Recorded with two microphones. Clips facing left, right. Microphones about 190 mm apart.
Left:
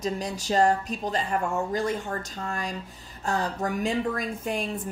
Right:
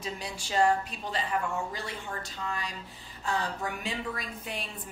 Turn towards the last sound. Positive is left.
turn(degrees=50)  # may be behind; listen again after turning